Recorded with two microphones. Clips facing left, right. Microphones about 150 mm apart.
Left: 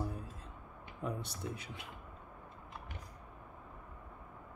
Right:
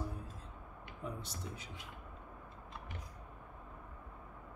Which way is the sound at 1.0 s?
65° left (ahead or behind).